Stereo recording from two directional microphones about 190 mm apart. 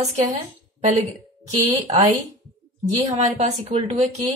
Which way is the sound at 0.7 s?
40° right (ahead or behind).